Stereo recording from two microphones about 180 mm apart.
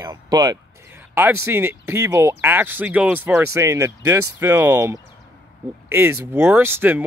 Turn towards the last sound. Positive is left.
turn(degrees=-10)  # may be behind; listen again after turning